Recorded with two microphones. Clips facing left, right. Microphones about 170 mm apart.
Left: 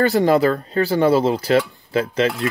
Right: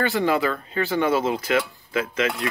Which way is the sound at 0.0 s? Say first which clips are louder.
Left 6 dB; 40° left (ahead or behind).